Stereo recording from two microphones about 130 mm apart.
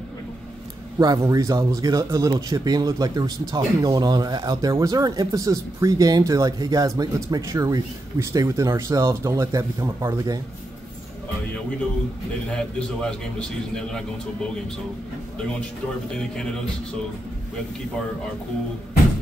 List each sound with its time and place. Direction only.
0.9 s speech: 25° right (ahead or behind)
12.7 s a man's voice: 5° left (ahead or behind)